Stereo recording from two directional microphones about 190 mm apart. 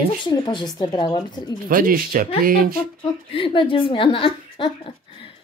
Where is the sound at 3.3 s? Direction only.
25° left (ahead or behind).